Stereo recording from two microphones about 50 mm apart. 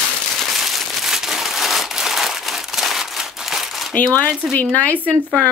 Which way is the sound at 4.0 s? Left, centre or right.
Left.